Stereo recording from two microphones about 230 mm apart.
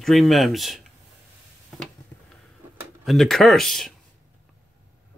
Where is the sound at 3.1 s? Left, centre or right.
Centre.